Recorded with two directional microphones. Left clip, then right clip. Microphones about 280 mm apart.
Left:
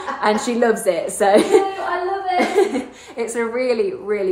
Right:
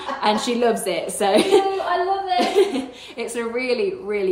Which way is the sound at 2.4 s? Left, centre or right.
Centre.